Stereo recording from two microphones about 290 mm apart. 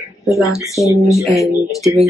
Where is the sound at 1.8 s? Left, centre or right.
Centre.